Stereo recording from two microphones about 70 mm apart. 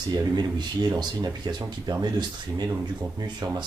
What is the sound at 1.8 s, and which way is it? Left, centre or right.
Speech, right.